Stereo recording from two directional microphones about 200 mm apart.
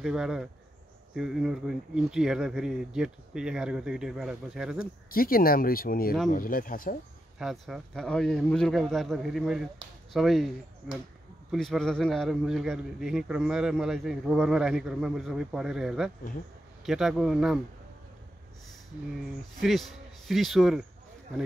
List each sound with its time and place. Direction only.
0.0 s a man's voice: centre (ahead or behind)
4.7 s speech: 45° left (ahead or behind)
7.3 s a man's voice: centre (ahead or behind)
19.1 s a man's voice: centre (ahead or behind)